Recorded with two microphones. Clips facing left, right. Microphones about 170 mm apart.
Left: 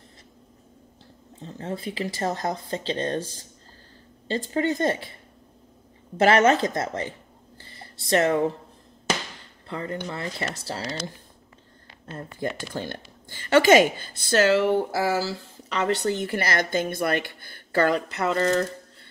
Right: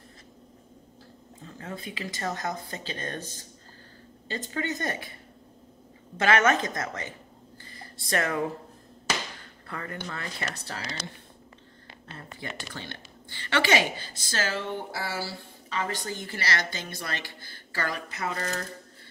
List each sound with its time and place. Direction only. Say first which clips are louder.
1.4 s speech: left 7 dB; 30° left (ahead or behind)
6.1 s speech: left 5 dB; 30° left (ahead or behind)
9.7 s speech: left 6 dB; 20° left (ahead or behind)
12.2 s a woman's voice: left 9 dB; 45° left (ahead or behind); by 15.3 s 90° left
15.8 s speech: left 10 dB; 65° left (ahead or behind)